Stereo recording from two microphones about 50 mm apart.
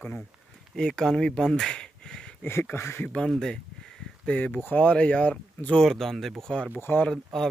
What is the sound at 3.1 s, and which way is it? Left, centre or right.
Speech, centre.